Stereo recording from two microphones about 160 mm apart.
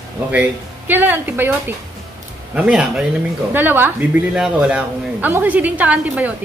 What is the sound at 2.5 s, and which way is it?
A woman's voice, 5° right (ahead or behind).